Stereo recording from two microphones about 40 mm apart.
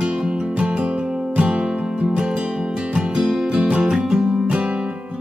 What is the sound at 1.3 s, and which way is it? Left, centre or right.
Music, right.